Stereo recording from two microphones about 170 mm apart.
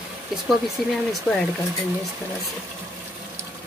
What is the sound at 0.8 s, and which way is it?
Speech, centre (ahead or behind).